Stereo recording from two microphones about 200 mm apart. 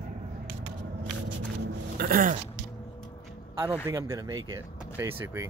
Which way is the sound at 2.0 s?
45° right (ahead or behind).